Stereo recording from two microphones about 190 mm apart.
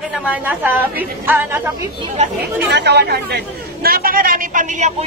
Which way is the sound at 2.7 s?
65° right (ahead or behind).